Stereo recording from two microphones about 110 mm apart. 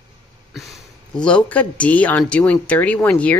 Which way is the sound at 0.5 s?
Centre (ahead or behind).